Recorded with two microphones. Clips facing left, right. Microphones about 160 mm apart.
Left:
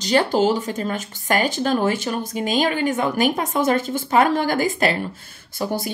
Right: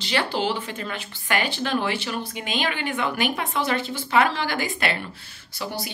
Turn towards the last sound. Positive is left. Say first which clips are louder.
# left 7 dB
turn(degrees=50)  # may be behind; listen again after turning